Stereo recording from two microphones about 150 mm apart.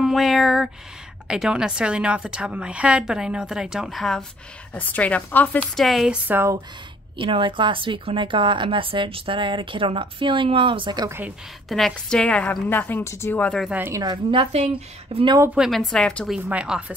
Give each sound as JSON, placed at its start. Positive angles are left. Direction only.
{"t": 0.0, "sound": "a woman's voice", "side_deg": 0}
{"t": 5.9, "sound": "a woman's voice", "side_deg": 0}
{"t": 6.2, "sound": "speech", "side_deg": -15}
{"t": 7.2, "sound": "speech", "side_deg": -35}
{"t": 11.1, "sound": "speech", "side_deg": -15}
{"t": 11.7, "sound": "a woman's voice", "side_deg": 5}
{"t": 13.7, "sound": "speech", "side_deg": -15}
{"t": 14.0, "sound": "speech", "side_deg": -35}
{"t": 15.5, "sound": "a woman's voice", "side_deg": 0}
{"t": 16.4, "sound": "a woman's voice", "side_deg": -5}